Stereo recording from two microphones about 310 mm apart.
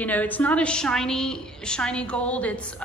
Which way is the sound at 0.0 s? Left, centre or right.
Centre.